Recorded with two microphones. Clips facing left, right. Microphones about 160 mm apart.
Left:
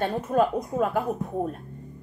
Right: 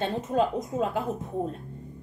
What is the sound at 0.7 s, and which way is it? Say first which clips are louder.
Speech: left 5 dB; 55° left (ahead or behind).